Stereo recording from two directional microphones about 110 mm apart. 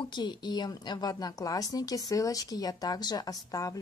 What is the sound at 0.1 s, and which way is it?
Speech, 40° left (ahead or behind).